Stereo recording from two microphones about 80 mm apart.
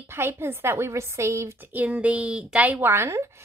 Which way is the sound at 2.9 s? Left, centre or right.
Right.